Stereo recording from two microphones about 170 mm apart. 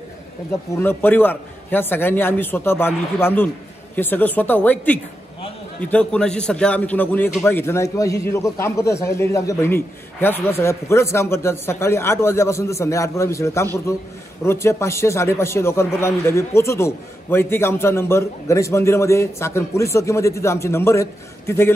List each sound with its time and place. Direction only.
0.5 s a man's voice: 15° left (ahead or behind)